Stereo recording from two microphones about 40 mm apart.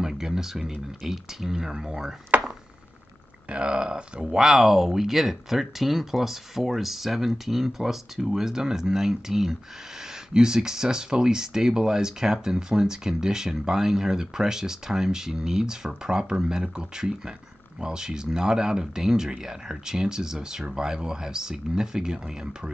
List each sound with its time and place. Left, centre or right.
0.0 s speech: centre
3.4 s speech: right
4.5 s speech: centre